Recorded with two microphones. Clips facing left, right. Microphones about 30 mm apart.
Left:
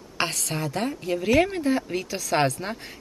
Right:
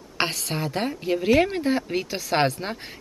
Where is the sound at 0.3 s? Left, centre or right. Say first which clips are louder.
Right 1 dB; centre.